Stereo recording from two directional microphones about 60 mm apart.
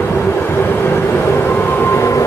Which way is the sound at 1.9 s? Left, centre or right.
Left.